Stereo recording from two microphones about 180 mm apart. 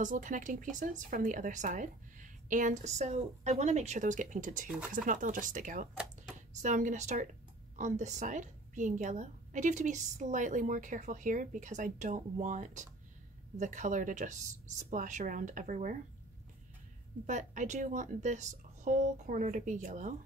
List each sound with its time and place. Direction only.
0.0 s a woman's voice: 45° right (ahead or behind)
17.3 s a woman's voice: 45° right (ahead or behind)